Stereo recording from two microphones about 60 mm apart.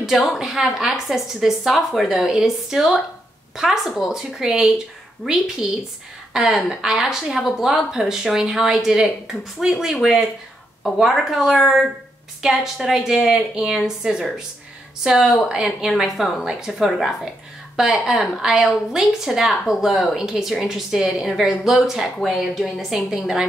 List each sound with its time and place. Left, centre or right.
0.0 s a woman's voice: centre